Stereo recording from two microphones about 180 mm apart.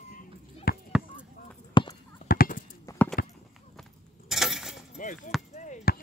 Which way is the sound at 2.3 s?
50° left (ahead or behind).